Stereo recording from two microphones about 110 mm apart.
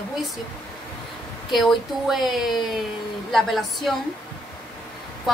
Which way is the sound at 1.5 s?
Centre (ahead or behind).